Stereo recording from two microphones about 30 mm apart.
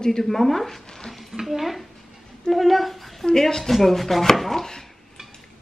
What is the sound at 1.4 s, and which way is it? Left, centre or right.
A child's voice, centre.